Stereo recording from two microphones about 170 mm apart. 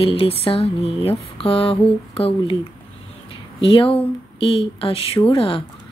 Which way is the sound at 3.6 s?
30° left (ahead or behind).